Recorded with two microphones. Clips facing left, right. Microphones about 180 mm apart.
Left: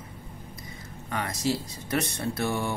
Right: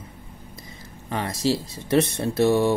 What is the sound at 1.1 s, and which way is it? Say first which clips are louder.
Speech: right 4 dB; 30° right (ahead or behind).